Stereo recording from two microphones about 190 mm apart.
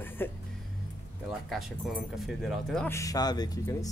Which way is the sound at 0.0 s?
10° left (ahead or behind).